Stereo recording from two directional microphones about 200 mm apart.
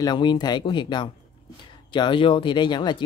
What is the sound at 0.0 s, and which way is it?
Speech, 20° left (ahead or behind).